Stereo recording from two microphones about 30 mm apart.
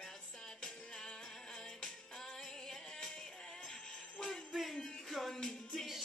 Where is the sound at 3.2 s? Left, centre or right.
Left.